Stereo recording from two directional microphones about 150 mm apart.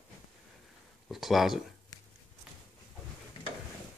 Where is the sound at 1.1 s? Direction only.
Centre (ahead or behind).